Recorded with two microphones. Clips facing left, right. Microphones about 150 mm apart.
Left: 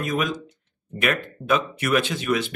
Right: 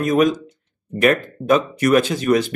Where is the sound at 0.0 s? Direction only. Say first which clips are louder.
Right 9 dB; 45° right (ahead or behind).